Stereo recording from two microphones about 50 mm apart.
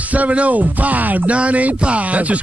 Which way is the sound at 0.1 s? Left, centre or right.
Right.